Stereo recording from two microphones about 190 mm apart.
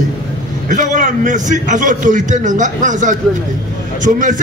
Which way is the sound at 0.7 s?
40° right (ahead or behind).